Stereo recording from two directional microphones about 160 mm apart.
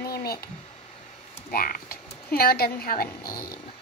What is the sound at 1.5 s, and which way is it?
Speech, 65° left (ahead or behind).